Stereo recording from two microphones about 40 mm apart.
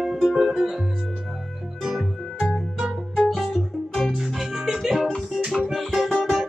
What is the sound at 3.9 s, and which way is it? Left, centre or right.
Music, centre.